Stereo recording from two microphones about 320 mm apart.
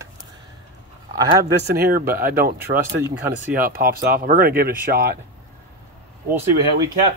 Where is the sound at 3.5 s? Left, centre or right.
Right.